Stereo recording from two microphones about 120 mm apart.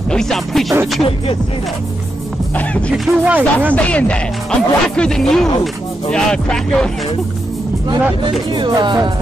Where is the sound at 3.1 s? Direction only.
20° right (ahead or behind).